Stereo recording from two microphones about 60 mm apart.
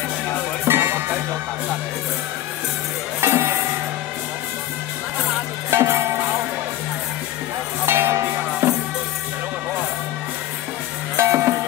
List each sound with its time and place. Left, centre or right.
0.7 s music: right
3.2 s music: right
5.7 s music: right
7.8 s music: right
11.1 s music: right